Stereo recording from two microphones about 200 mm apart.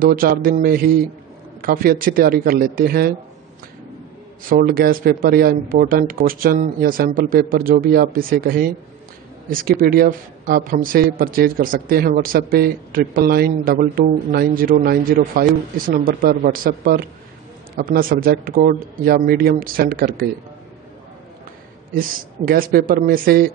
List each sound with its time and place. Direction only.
0.0 s speech: 45° right (ahead or behind)
4.5 s speech: 45° right (ahead or behind)
21.9 s speech: 45° right (ahead or behind)